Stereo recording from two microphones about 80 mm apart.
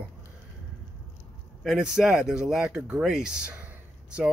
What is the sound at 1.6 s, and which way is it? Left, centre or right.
Speech, centre.